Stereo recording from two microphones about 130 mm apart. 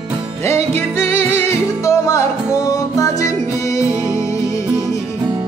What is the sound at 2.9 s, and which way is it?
Music, 25° left (ahead or behind).